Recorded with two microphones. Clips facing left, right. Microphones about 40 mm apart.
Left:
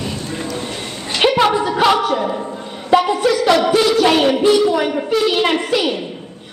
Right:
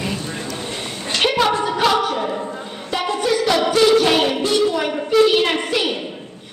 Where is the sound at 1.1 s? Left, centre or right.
Centre.